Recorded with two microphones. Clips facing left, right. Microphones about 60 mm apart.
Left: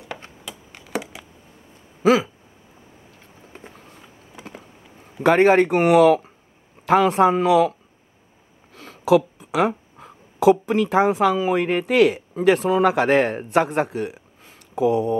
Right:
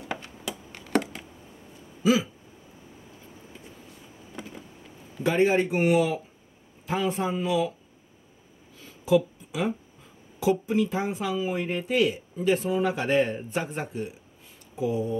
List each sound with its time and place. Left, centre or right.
0.5 s a sound: centre
2.0 s a sound: left
3.2 s vehicle: left
4.3 s vehicle: centre
5.2 s speech: left
8.7 s speech: left